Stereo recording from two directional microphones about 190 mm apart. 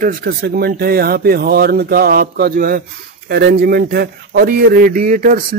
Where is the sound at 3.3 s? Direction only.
60° right (ahead or behind).